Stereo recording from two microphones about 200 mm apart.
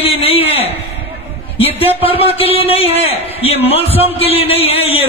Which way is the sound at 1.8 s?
30° left (ahead or behind).